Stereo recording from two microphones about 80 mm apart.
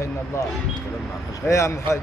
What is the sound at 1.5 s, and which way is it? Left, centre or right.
Speech, left.